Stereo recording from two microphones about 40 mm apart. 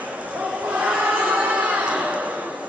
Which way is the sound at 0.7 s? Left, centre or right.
Right.